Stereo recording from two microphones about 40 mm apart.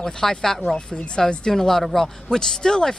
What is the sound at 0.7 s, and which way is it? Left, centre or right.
Speech, left.